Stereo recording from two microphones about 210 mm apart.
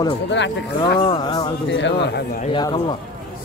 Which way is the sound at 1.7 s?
55° left (ahead or behind).